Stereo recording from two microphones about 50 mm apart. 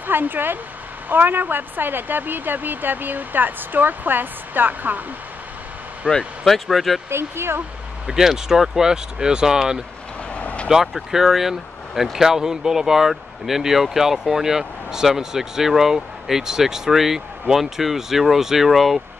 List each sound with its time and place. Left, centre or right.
0.0 s a woman's voice: right
6.0 s speech: right
6.4 s speech: centre
7.1 s speech: right
8.2 s speech: centre
10.3 s vehicle: left
10.7 s speech: centre